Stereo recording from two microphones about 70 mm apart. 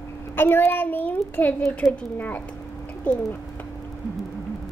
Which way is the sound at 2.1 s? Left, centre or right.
Left.